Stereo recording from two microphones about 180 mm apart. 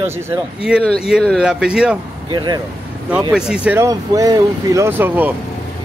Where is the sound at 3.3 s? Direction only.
5° right (ahead or behind).